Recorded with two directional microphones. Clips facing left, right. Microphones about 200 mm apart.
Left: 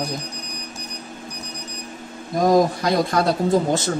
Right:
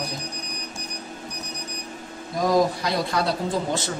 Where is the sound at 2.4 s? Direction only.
50° left (ahead or behind).